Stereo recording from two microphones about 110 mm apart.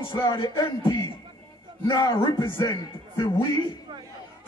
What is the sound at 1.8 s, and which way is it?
Music, 35° left (ahead or behind).